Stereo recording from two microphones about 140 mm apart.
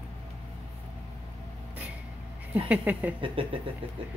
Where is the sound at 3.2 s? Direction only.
40° right (ahead or behind).